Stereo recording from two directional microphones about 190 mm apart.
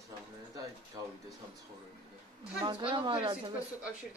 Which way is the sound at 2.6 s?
25° right (ahead or behind).